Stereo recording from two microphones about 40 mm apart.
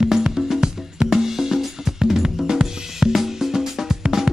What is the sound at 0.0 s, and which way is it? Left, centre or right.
Music, centre.